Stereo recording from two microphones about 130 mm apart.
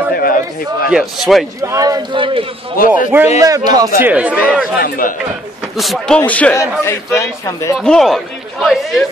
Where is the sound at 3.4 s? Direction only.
25° right (ahead or behind).